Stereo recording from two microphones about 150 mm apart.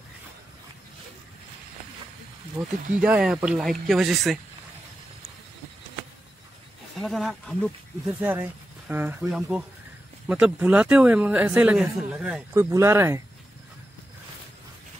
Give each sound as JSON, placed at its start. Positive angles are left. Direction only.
{"t": 2.6, "sound": "speech", "side_deg": -10}
{"t": 7.0, "sound": "speech", "side_deg": 0}
{"t": 8.2, "sound": "speech", "side_deg": -10}
{"t": 12.5, "sound": "speech", "side_deg": -20}